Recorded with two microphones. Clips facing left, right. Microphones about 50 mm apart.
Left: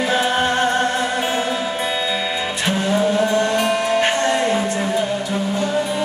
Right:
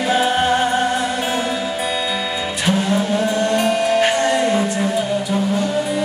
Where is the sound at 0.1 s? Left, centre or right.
Centre.